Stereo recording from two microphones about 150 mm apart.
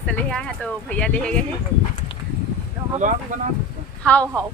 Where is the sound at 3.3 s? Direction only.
60° right (ahead or behind).